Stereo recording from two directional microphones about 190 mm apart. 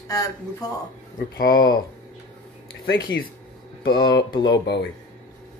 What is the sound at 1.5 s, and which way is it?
Speech, 20° left (ahead or behind).